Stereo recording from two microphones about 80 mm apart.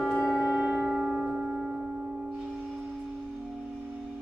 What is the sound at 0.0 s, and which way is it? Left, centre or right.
Music, centre.